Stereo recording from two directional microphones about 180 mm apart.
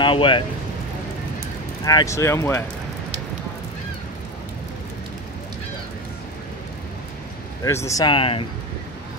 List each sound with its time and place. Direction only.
0.0 s speech: 30° left (ahead or behind)
1.9 s speech: 20° left (ahead or behind)
7.6 s speech: 15° left (ahead or behind)